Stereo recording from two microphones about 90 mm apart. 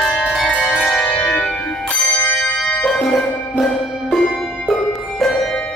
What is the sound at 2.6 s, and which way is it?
Music, 10° left (ahead or behind).